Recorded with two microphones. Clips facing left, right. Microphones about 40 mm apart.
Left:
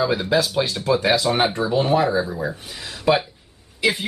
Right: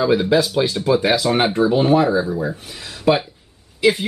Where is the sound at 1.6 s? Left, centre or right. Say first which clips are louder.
Right 5 dB; centre.